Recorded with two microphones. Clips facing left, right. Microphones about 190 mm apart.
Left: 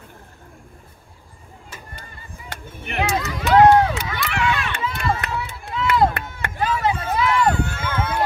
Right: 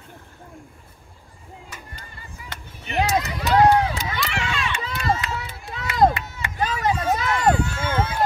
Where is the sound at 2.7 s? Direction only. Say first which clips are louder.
Right 3 dB; 55° left (ahead or behind).